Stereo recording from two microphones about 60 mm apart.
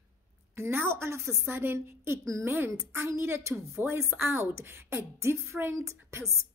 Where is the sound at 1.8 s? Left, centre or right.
Right.